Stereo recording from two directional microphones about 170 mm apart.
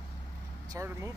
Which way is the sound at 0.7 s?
15° right (ahead or behind).